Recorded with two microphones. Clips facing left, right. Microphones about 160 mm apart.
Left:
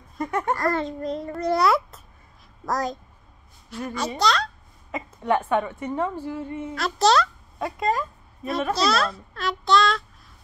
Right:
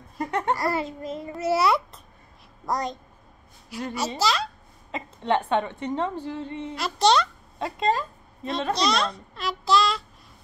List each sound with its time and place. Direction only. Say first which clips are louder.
0.6 s a child's voice: left 2 dB; 10° right (ahead or behind)
3.7 s a child's voice: even; 10° right (ahead or behind)
4.9 s a woman's voice: left 1 dB; 25° right (ahead or behind)
6.8 s a child's voice: left 1 dB; centre (ahead or behind)
7.5 s a woman's voice: even; 25° right (ahead or behind)
8.7 s a child's voice: left 2 dB; 5° left (ahead or behind)